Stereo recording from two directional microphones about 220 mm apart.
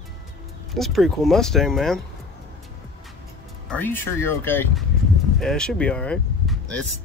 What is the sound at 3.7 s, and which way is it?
Speech, 10° left (ahead or behind).